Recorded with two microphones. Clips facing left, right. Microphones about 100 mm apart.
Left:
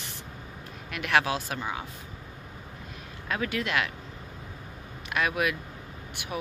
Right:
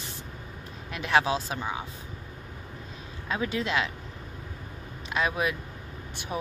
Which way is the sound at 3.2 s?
20° right (ahead or behind).